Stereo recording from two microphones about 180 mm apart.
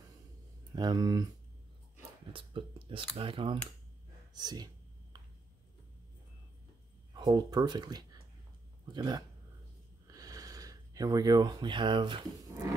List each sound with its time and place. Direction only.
0.7 s speech: 25° right (ahead or behind)
2.3 s speech: 30° right (ahead or behind)
5.1 s a sound: 20° right (ahead or behind)
7.2 s speech: 20° right (ahead or behind)